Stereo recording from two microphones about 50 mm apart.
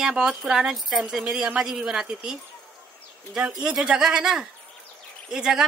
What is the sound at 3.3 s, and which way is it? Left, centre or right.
Speech, centre.